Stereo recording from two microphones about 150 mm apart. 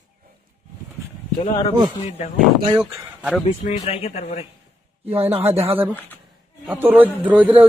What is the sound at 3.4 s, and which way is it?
Speech, 50° left (ahead or behind).